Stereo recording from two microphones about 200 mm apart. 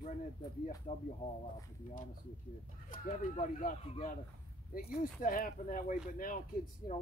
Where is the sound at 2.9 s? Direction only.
40° left (ahead or behind).